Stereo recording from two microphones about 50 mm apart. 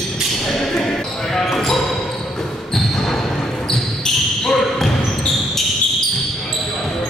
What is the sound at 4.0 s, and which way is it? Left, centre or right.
Basketball bounce, centre.